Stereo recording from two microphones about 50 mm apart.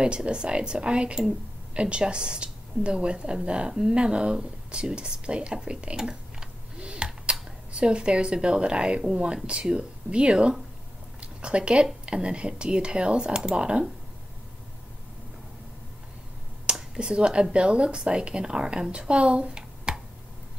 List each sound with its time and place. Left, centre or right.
0.0 s a woman's voice: centre
16.7 s speech: centre